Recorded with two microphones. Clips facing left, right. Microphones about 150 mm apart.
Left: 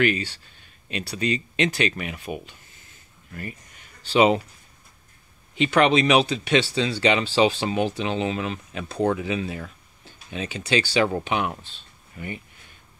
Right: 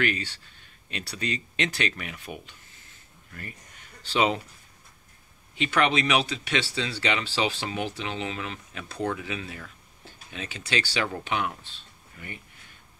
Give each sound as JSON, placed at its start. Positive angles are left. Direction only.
{"t": 0.0, "sound": "speech", "side_deg": 10}
{"t": 4.1, "sound": "speech", "side_deg": 15}
{"t": 5.6, "sound": "speech", "side_deg": 20}